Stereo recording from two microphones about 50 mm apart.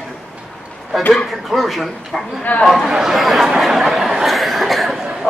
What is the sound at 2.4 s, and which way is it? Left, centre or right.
Speech, left.